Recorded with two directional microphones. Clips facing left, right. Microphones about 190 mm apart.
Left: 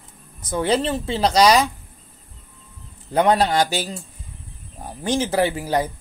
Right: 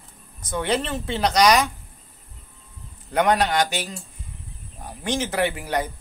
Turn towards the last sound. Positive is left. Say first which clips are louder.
# left 4 dB
turn(degrees=35)  # may be behind; listen again after turning